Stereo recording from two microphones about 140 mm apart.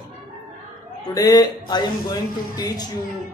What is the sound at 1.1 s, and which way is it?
Speech, 30° left (ahead or behind).